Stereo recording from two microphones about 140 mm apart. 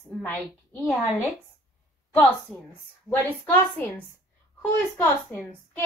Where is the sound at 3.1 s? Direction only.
15° left (ahead or behind).